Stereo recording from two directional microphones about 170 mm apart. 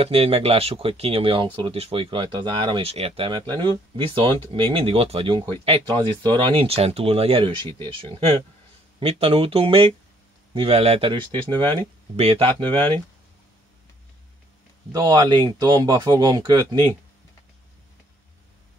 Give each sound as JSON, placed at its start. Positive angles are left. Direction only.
{"t": 0.0, "sound": "speech", "side_deg": -35}
{"t": 14.9, "sound": "speech", "side_deg": -25}